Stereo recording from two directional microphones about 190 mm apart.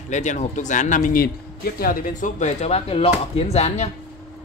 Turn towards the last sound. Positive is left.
turn(degrees=35)  # may be behind; listen again after turning